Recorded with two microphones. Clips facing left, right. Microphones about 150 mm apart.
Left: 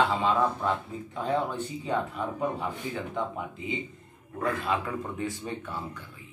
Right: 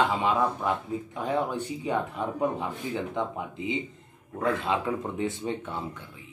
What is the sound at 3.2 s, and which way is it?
Speech, 20° right (ahead or behind).